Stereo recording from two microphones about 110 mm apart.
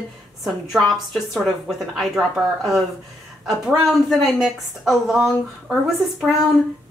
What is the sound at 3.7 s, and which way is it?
Speech, centre (ahead or behind).